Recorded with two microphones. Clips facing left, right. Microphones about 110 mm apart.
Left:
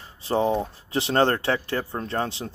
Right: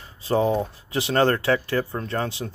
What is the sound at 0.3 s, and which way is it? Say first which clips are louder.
Speech: right 1 dB; 25° left (ahead or behind).